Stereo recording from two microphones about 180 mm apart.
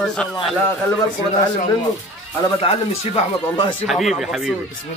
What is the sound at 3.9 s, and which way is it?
Speech, centre (ahead or behind).